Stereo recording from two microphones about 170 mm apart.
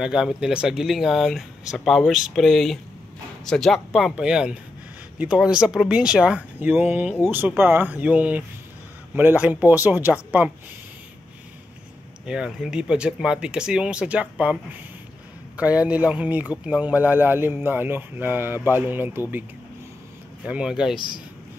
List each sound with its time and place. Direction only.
0.0 s a man's voice: centre (ahead or behind)
12.3 s a man's voice: 5° right (ahead or behind)
20.4 s speech: 5° right (ahead or behind)
20.9 s speech: 30° left (ahead or behind)